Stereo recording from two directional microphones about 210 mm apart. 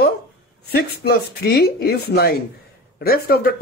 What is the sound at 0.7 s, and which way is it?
Speech, 50° left (ahead or behind).